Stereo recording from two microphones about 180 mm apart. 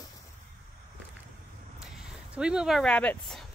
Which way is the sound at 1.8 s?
5° right (ahead or behind).